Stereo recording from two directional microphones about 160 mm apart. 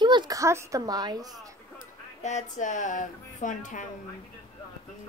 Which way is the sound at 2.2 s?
50° left (ahead or behind).